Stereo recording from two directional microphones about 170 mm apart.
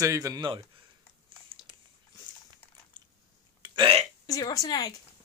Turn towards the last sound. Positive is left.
turn(degrees=20)  # may be behind; listen again after turning